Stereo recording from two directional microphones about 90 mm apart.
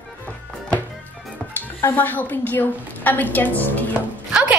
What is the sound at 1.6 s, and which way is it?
A woman's voice, 20° left (ahead or behind).